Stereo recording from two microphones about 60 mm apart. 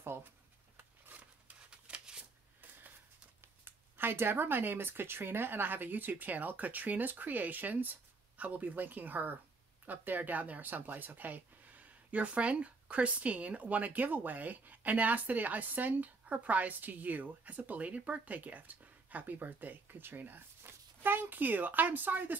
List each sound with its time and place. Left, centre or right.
0.0 s speech: right
0.7 s a sound: right
1.7 s shuffling cards: centre
3.6 s speech: right